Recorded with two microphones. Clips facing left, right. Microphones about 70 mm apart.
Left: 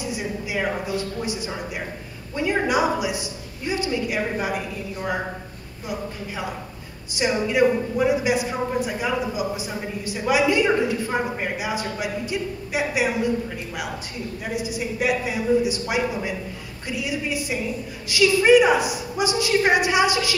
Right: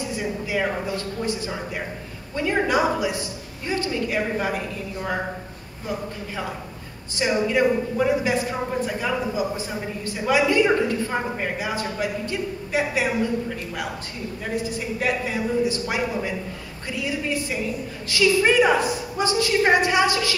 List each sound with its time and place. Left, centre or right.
0.0 s a sound: centre
0.8 s speech: centre
14.4 s speech: centre